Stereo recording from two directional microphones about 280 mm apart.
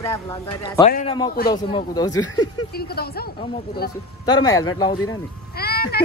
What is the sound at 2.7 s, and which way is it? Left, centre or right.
Speech, left.